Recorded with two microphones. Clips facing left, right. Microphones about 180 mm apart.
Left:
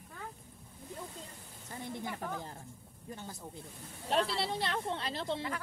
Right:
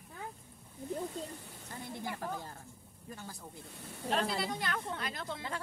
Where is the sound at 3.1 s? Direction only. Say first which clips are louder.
Left 2 dB; 20° left (ahead or behind).